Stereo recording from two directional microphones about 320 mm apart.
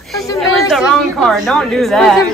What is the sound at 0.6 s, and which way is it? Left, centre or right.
Speech, centre.